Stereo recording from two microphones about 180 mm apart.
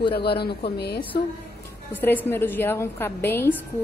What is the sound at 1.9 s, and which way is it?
A woman's voice, 10° left (ahead or behind).